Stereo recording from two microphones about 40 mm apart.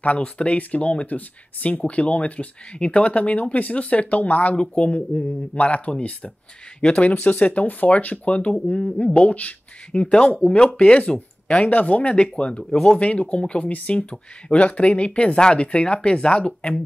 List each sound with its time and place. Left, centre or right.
0.2 s speech: left
4.6 s speech: left
10.0 s speech: left
11.6 s speech: left
12.7 s speech: centre
13.0 s speech: left